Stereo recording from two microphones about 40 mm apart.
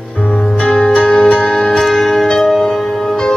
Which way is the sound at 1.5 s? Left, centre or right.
Centre.